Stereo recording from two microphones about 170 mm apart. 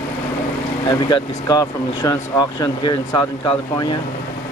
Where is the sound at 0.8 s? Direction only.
25° left (ahead or behind).